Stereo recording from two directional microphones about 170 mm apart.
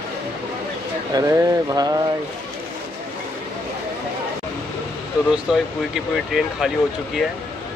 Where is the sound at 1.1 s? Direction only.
20° right (ahead or behind).